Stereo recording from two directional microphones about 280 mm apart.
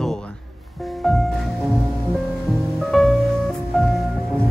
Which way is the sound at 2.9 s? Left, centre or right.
Centre.